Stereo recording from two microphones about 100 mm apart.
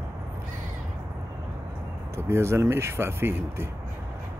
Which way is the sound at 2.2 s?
25° right (ahead or behind).